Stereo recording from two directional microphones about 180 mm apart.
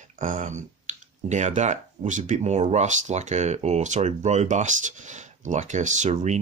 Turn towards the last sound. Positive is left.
turn(degrees=-40)  # may be behind; listen again after turning